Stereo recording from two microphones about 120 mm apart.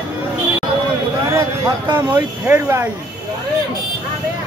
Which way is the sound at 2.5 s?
20° right (ahead or behind).